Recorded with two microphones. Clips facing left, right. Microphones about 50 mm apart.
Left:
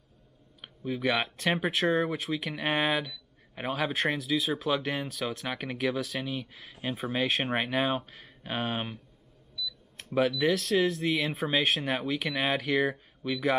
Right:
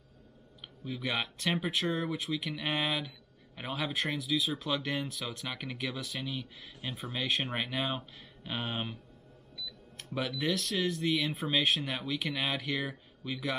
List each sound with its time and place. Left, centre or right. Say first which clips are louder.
0.6 s speech: left 6 dB; left
9.9 s speech: left 8 dB; centre
11.4 s speech: left 4 dB; left